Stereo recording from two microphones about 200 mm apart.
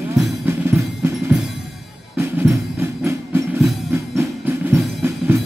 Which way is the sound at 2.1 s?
10° right (ahead or behind).